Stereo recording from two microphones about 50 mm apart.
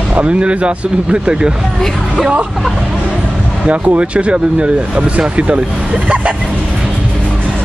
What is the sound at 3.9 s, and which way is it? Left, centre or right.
Speech, right.